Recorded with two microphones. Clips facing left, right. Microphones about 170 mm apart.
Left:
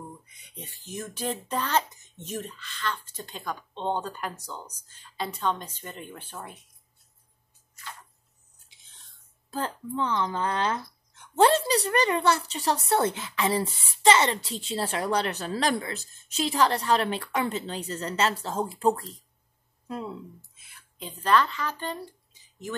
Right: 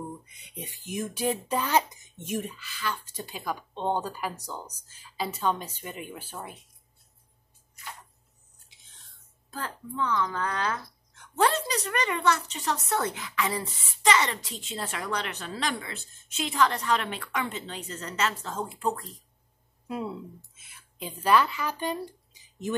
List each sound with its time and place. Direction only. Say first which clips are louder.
0.4 s speech: right 4 dB; 15° right (ahead or behind)
9.5 s a woman's voice: left 5 dB; 30° left (ahead or behind)
19.9 s a woman's voice: right 1 dB; 5° right (ahead or behind)